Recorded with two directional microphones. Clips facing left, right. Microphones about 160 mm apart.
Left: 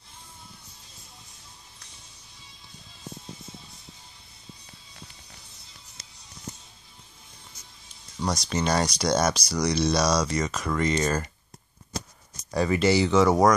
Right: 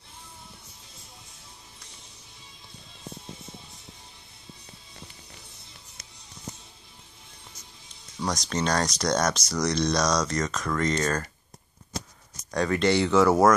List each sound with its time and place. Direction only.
8.2 s speech: centre (ahead or behind)
12.4 s speech: 5° left (ahead or behind)